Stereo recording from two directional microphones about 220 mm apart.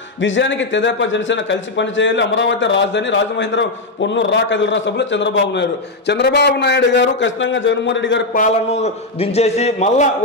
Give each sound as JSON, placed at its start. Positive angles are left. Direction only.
{"t": 0.2, "sound": "speech", "side_deg": 55}
{"t": 8.4, "sound": "a man's voice", "side_deg": 30}